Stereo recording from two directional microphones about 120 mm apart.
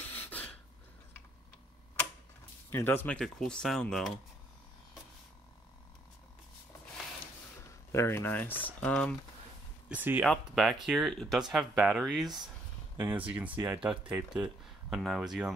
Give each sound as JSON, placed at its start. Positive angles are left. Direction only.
{"t": 0.1, "sound": "beatboxing", "side_deg": 15}
{"t": 2.7, "sound": "speech", "side_deg": 20}
{"t": 3.2, "sound": "speech", "side_deg": 5}
{"t": 7.9, "sound": "speech", "side_deg": 20}
{"t": 9.8, "sound": "speech", "side_deg": -15}
{"t": 10.2, "sound": "speech", "side_deg": 0}
{"t": 12.9, "sound": "speech", "side_deg": -20}